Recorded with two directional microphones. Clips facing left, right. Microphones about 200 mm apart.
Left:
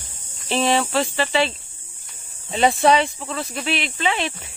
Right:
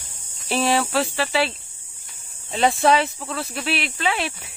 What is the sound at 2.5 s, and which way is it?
Speech, centre (ahead or behind).